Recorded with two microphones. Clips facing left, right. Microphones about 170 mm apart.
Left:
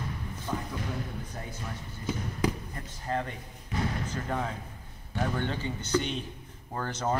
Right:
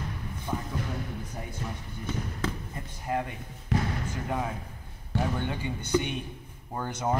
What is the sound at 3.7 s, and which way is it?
Basketball bounce, 80° right.